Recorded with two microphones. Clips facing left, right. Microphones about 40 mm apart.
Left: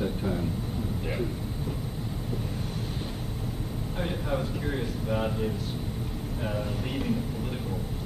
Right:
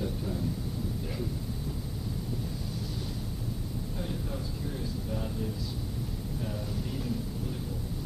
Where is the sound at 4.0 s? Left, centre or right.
Left.